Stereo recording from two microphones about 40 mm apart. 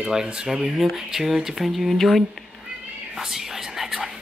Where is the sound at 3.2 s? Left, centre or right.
Centre.